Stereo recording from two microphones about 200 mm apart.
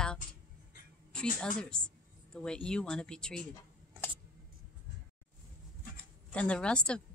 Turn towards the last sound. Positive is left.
turn(degrees=5)  # may be behind; listen again after turning